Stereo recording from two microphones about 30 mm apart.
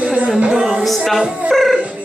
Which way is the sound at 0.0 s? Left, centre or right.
Right.